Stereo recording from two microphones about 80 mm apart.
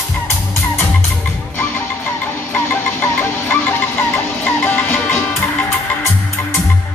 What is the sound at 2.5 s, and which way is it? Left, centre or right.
Music, left.